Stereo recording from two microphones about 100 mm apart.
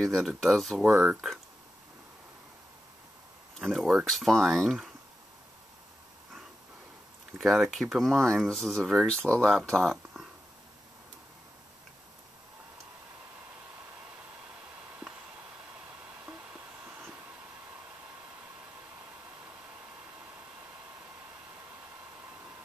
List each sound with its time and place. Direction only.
0.0 s speech: centre (ahead or behind)
3.6 s speech: 5° right (ahead or behind)
7.3 s speech: centre (ahead or behind)